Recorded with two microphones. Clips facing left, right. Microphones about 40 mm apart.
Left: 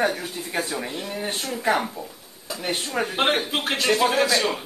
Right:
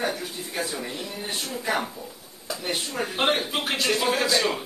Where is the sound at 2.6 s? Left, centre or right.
Left.